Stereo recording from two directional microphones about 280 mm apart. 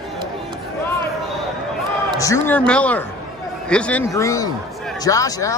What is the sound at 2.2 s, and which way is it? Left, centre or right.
Speech, centre.